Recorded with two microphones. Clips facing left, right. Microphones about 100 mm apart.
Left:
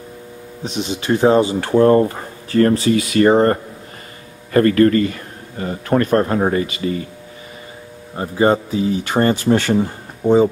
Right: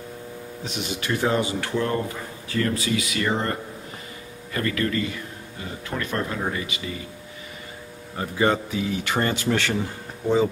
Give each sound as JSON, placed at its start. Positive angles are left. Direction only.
{"t": 0.7, "sound": "speech", "side_deg": 25}
{"t": 8.2, "sound": "speech", "side_deg": 30}